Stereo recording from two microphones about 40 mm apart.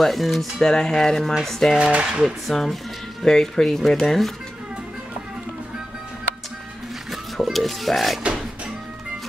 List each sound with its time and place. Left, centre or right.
0.0 s speech: centre
0.6 s speech: centre
1.8 s speech: right
2.4 s speech: centre
7.5 s music: centre